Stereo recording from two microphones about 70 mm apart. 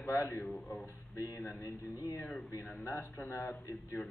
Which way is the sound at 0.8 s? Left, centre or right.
Left.